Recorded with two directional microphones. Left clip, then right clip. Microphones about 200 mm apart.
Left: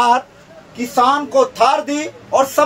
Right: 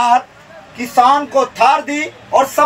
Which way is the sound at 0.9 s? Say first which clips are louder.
Right 2 dB; 20° left (ahead or behind).